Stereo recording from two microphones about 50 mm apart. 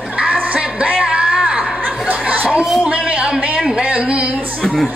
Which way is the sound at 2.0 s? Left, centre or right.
Right.